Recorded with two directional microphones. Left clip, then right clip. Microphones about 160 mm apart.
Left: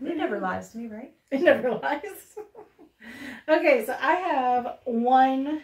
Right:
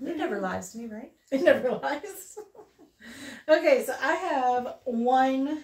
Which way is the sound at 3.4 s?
10° left (ahead or behind).